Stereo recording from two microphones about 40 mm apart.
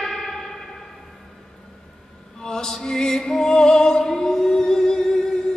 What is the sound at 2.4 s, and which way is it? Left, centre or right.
Music, centre.